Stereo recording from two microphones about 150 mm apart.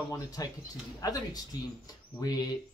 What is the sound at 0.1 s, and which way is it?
Speech, 25° left (ahead or behind).